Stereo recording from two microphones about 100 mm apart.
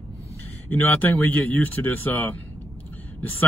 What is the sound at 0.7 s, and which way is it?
Speech, 15° left (ahead or behind).